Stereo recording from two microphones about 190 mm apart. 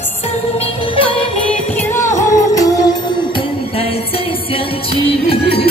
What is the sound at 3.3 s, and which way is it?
Music, 30° left (ahead or behind).